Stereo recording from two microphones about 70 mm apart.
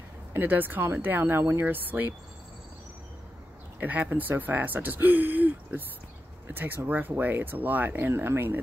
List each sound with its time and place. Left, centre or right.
0.3 s speech: right
1.4 s speech: right
1.7 s speech: right
3.8 s speech: right